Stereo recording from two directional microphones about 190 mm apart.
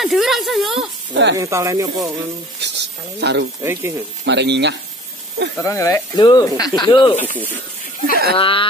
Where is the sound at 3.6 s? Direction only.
15° right (ahead or behind).